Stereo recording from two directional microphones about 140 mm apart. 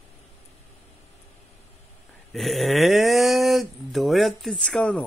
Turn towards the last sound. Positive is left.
turn(degrees=10)  # may be behind; listen again after turning